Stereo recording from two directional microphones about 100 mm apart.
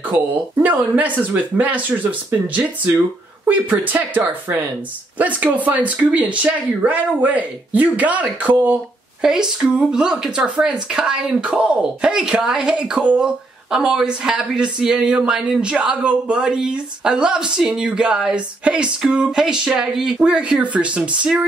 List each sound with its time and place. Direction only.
0.6 s speech: 15° right (ahead or behind)
9.2 s speech: 5° right (ahead or behind)